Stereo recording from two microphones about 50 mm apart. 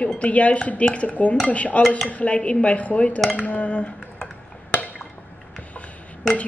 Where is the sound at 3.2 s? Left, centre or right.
Left.